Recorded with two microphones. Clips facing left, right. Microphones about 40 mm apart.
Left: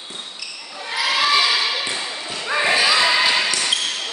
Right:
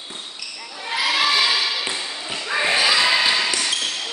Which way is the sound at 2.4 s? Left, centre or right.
Centre.